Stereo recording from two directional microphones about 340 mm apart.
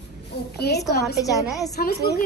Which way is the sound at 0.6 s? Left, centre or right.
Left.